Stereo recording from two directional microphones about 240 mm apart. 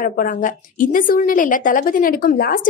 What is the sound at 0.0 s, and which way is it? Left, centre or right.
A woman's voice, left.